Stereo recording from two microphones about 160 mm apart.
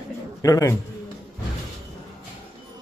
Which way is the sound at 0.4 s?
20° left (ahead or behind).